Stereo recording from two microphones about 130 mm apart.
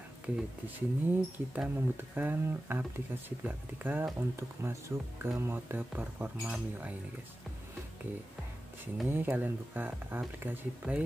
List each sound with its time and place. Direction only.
0.7 s speech: 15° right (ahead or behind)
9.1 s speech: 15° right (ahead or behind)